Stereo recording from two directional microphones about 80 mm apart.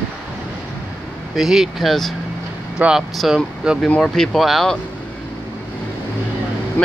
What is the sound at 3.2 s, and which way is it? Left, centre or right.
Speech, centre.